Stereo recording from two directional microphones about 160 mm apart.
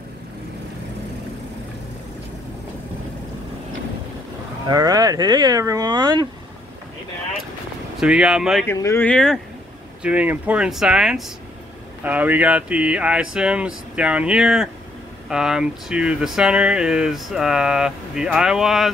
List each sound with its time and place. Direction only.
4.6 s speech: 25° right (ahead or behind)
8.0 s speech: 5° right (ahead or behind)
8.6 s speech: 15° left (ahead or behind)
9.0 s speech: 5° left (ahead or behind)
10.0 s speech: 10° right (ahead or behind)